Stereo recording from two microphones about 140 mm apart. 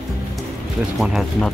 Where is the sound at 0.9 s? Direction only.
Centre (ahead or behind).